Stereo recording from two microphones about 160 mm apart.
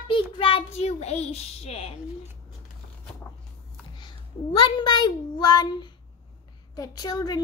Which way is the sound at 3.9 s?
30° left (ahead or behind).